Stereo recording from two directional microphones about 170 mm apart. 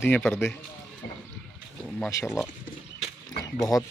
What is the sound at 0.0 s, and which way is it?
Speech, 5° left (ahead or behind).